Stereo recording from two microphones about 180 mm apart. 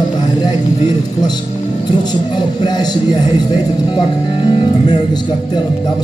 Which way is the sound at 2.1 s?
25° left (ahead or behind).